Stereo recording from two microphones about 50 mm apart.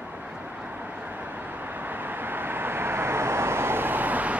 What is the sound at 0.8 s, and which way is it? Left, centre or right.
Vehicle, right.